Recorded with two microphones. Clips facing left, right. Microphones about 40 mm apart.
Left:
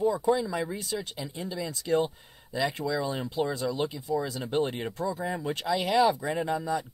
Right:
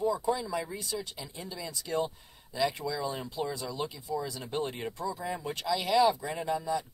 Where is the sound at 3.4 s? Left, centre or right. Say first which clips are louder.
Left 6 dB; left.